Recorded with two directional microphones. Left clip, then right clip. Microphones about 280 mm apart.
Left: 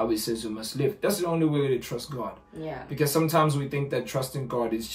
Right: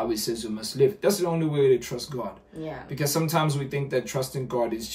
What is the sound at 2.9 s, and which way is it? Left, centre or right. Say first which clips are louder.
Speech: left 2 dB; centre.